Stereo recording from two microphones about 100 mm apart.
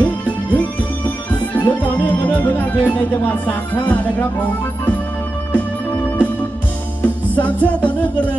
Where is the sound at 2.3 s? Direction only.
15° left (ahead or behind).